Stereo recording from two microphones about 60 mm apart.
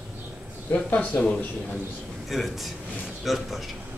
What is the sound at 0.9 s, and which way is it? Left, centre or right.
Speech, left.